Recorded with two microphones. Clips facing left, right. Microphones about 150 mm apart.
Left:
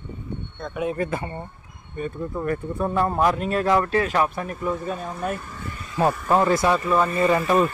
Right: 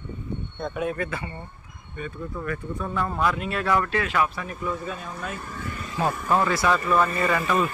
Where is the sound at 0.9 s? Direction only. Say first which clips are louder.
Left 4 dB; 45° left (ahead or behind).